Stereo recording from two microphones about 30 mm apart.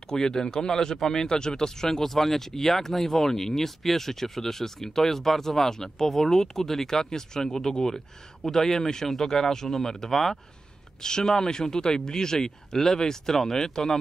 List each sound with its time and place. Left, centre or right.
0.1 s speech: left
11.0 s speech: left